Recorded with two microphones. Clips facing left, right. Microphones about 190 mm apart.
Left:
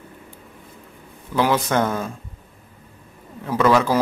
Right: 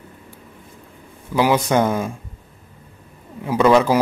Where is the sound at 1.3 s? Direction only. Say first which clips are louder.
Right 3 dB; 15° right (ahead or behind).